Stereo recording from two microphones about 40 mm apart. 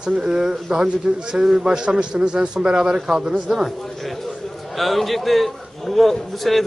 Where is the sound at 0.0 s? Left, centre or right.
Right.